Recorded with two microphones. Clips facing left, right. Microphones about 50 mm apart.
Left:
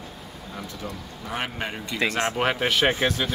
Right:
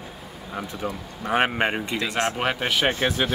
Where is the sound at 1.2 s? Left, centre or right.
Right.